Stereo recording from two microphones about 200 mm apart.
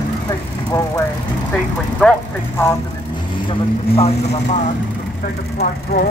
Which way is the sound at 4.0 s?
35° left (ahead or behind).